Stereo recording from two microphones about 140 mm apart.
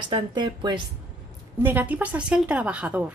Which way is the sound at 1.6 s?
15° right (ahead or behind).